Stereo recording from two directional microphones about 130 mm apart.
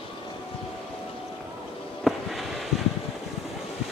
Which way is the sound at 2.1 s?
Centre (ahead or behind).